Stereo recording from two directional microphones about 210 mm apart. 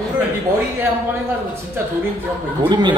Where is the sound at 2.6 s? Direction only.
20° right (ahead or behind).